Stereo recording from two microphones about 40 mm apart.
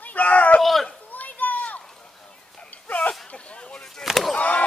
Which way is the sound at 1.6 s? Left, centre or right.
Left.